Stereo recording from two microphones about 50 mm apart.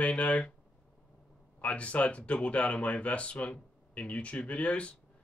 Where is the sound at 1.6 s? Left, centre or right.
Left.